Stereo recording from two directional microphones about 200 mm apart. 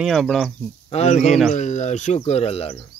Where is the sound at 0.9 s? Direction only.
35° left (ahead or behind).